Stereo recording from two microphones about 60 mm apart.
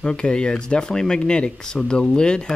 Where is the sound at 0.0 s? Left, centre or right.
Centre.